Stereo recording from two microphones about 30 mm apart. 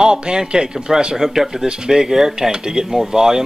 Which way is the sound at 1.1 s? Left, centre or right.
Centre.